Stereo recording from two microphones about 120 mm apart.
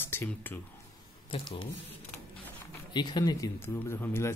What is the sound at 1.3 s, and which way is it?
Speech, 50° left (ahead or behind).